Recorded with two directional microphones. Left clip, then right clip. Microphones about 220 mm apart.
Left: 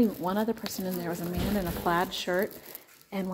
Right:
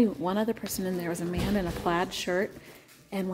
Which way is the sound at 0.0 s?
10° right (ahead or behind).